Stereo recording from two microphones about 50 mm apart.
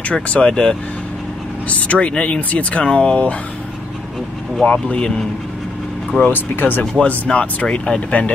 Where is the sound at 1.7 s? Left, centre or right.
Left.